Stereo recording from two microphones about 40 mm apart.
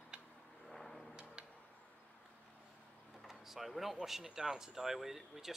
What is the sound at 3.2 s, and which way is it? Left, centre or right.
Speech, centre.